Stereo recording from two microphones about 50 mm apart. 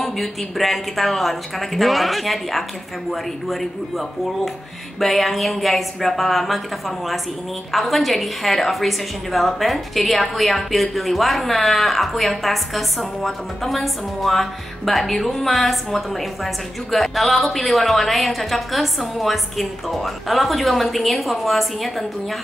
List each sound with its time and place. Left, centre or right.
0.0 s a woman's voice: centre
5.0 s a woman's voice: centre
7.7 s a woman's voice: centre